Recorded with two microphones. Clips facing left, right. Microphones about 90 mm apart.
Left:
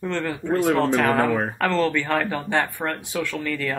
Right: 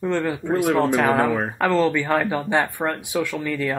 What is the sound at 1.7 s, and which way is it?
Speech, 15° right (ahead or behind).